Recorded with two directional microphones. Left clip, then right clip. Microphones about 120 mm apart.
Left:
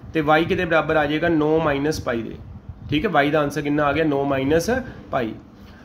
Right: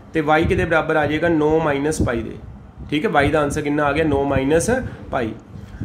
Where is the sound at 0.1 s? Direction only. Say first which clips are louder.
Right 1 dB; 25° left (ahead or behind).